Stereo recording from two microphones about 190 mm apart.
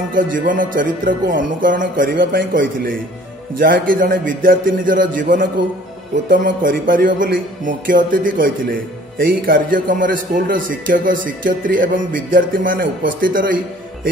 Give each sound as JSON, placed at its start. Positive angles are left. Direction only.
{"t": 0.1, "sound": "a man's voice", "side_deg": -45}